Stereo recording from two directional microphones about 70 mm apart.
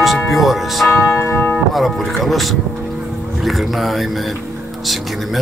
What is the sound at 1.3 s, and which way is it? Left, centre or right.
Speech, left.